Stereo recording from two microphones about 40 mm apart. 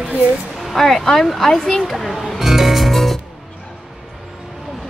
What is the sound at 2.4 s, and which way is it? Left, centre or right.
Music, centre.